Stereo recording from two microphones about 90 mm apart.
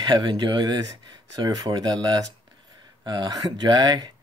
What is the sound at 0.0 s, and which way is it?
Speech, 60° right (ahead or behind).